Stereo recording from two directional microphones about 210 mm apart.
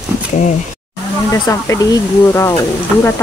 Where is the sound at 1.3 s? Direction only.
15° left (ahead or behind).